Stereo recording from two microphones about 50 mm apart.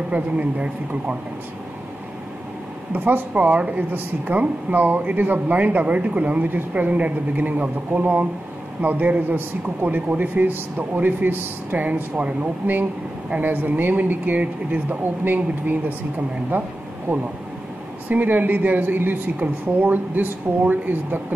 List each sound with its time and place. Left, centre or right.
0.1 s speech: right
2.9 s a woman's voice: right
13.4 s a woman's voice: right